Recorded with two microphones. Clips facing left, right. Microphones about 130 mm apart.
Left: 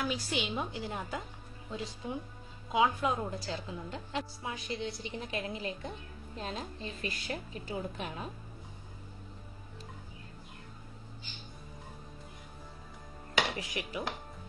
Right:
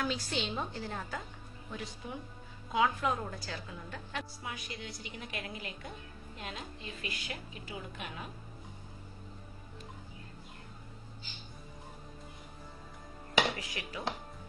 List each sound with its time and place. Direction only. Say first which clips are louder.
0.0 s a woman's voice: left 1 dB; 5° left (ahead or behind); by 8.3 s 35° left (ahead or behind)
13.6 s a woman's voice: left 4 dB; 20° left (ahead or behind)